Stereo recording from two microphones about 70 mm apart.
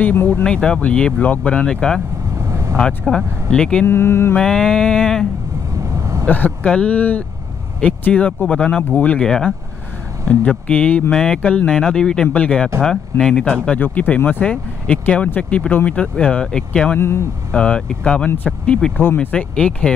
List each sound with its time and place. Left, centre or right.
0.0 s speech: left
0.4 s speech: centre
2.3 s vehicle: right
3.1 s speech: centre
3.8 s mantra: left
4.4 s speech: centre
5.8 s vehicle: right
6.2 s speech: left
9.2 s speech: centre
13.7 s speech: left